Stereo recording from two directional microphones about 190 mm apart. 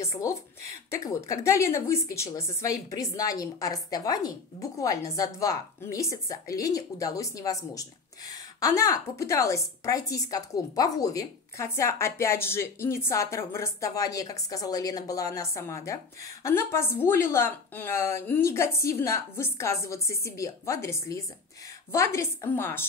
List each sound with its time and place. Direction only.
0.0 s a woman's voice: 15° left (ahead or behind)